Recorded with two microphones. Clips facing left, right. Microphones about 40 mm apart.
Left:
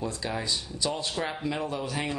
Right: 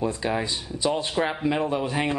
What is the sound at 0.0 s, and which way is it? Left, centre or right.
Speech, right.